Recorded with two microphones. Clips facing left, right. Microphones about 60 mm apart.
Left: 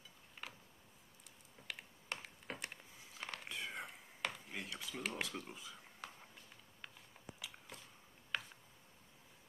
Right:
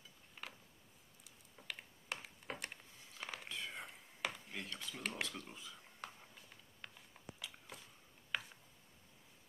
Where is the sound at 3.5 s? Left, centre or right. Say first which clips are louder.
Left 1 dB; centre.